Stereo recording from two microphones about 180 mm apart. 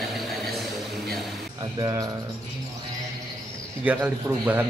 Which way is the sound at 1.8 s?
20° right (ahead or behind).